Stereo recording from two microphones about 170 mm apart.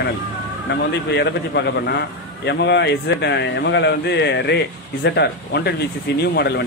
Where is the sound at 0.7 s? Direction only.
85° left.